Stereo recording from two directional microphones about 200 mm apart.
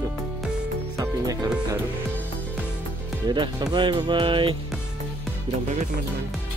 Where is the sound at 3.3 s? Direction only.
20° right (ahead or behind).